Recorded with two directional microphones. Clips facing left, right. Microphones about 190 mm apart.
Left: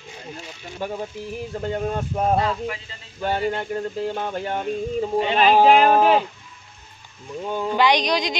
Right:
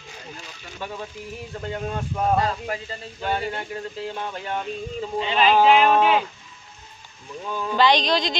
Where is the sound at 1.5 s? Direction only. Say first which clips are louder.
Left 4 dB; 30° left (ahead or behind).